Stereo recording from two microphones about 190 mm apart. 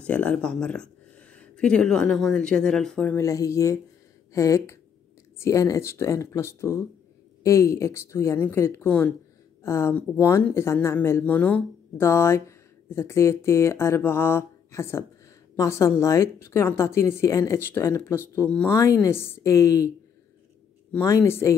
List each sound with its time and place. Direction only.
0.0 s speech: 5° left (ahead or behind)
20.9 s speech: 15° left (ahead or behind)